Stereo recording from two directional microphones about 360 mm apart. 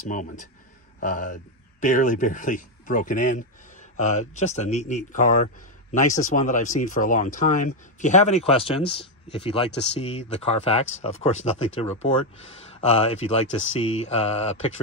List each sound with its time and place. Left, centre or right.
0.1 s speech: left